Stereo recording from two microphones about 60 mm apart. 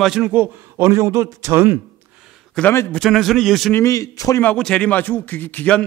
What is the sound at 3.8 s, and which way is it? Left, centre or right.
Speech, left.